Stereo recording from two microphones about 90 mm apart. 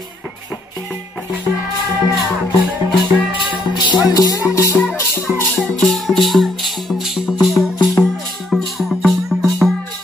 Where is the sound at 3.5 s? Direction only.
60° left (ahead or behind); by 4.7 s 40° left (ahead or behind).